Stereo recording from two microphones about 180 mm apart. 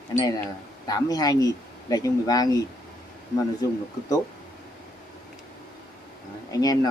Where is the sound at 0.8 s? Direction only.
20° left (ahead or behind).